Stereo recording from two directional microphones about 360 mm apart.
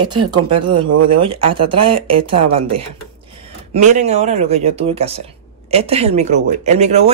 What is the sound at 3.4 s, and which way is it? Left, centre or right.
Speech, centre.